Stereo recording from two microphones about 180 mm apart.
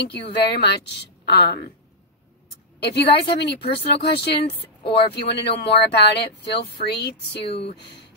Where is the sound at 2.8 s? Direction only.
65° left (ahead or behind).